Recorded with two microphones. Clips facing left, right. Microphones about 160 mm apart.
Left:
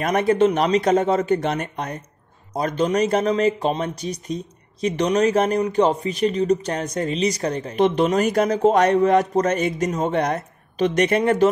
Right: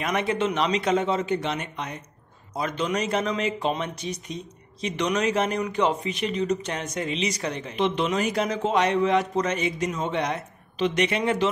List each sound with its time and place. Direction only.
0.0 s speech: 45° left (ahead or behind)